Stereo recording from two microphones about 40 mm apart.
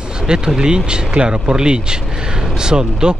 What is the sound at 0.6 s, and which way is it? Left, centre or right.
Speech, right.